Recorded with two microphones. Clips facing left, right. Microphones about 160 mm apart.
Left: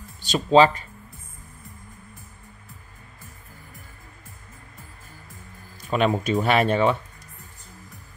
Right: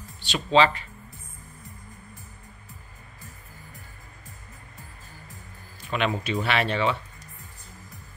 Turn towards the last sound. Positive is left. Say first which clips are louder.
# left 5 dB
turn(degrees=45)  # may be behind; listen again after turning